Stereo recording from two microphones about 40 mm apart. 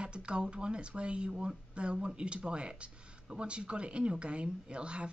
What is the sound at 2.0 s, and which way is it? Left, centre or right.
Speech, right.